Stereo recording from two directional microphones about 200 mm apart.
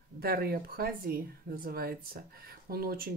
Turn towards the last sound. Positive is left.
turn(degrees=-45)  # may be behind; listen again after turning